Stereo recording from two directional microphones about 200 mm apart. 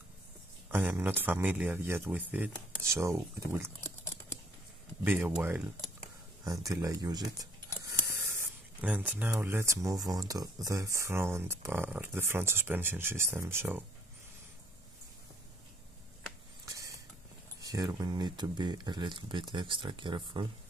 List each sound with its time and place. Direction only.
0.7 s speech: 10° right (ahead or behind)
5.0 s speech: 5° right (ahead or behind)
16.6 s mechanisms: 15° right (ahead or behind)
17.6 s speech: 20° right (ahead or behind)